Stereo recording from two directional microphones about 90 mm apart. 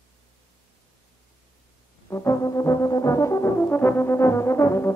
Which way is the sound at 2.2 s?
35° left (ahead or behind).